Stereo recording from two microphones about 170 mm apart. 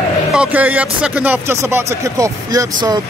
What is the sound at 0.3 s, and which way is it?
Speech, 5° right (ahead or behind).